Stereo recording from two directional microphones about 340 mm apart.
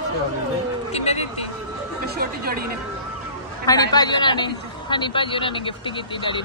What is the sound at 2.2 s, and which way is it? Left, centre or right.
Speech, right.